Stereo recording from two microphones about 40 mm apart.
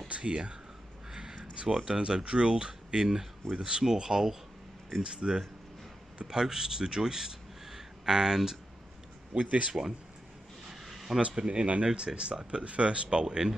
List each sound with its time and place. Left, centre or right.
0.1 s speech: right
1.4 s a sound: right
1.9 s speech: centre
9.7 s speech: centre
10.7 s a sound: centre
11.1 s speech: right
13.2 s speech: centre